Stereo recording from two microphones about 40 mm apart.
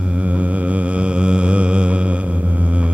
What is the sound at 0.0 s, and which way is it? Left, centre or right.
Mantra, right.